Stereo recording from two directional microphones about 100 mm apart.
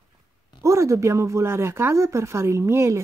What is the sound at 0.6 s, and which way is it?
Speech, 30° right (ahead or behind).